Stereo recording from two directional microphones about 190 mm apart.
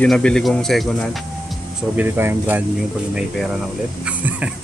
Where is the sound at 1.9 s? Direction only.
10° right (ahead or behind).